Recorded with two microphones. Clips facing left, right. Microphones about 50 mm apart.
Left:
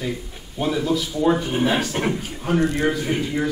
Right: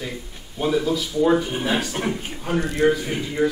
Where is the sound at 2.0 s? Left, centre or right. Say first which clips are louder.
Left 2 dB; centre.